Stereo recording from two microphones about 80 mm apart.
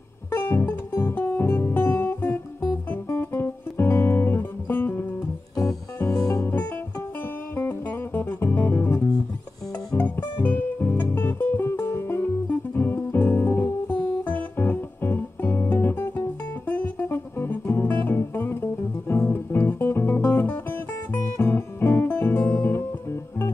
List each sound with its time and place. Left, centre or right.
0.3 s music: left
5.9 s music: left
7.5 s music: left